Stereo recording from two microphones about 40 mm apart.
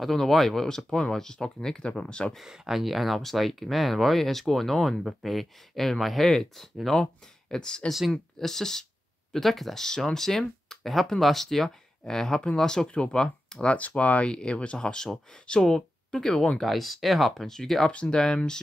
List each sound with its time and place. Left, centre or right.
0.0 s speech: centre
0.7 s speech: centre
2.4 s speech: centre
7.0 s speech: centre
8.1 s speech: centre
9.8 s speech: centre
12.8 s speech: left
13.7 s speech: left
14.2 s speech: left
17.9 s speech: left